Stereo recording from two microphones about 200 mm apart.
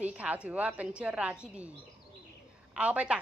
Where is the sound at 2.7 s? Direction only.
5° right (ahead or behind).